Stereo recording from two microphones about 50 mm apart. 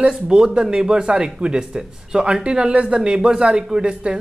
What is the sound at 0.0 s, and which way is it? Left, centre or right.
Speech, centre.